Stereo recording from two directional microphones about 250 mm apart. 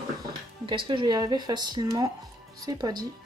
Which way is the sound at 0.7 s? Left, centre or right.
Centre.